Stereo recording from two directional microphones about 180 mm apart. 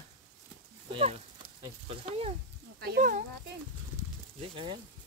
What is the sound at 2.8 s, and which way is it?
Speech, 55° right (ahead or behind).